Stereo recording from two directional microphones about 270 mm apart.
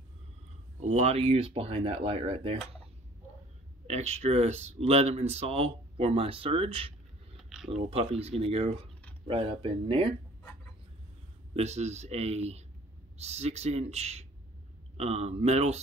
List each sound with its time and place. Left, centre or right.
0.7 s speech: right
3.8 s speech: right
7.3 s a sound: centre
7.7 s speech: right
11.5 s speech: right